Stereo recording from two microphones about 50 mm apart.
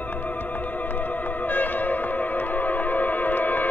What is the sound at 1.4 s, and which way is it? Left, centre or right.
Music, left.